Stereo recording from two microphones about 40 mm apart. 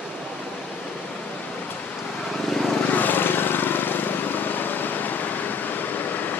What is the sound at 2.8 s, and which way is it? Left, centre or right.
Vehicle, left.